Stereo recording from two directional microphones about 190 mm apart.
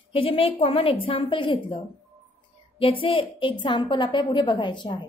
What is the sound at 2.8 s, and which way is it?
A woman's voice, 30° left (ahead or behind).